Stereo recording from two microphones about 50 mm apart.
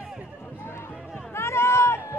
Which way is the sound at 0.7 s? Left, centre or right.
Left.